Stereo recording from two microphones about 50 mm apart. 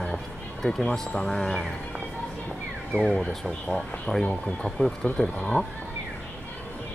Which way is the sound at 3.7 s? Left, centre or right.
Centre.